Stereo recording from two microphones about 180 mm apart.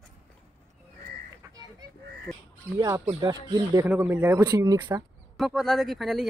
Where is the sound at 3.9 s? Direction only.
10° right (ahead or behind).